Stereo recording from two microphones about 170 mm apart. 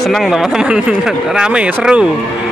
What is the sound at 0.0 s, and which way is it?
Speech, centre (ahead or behind).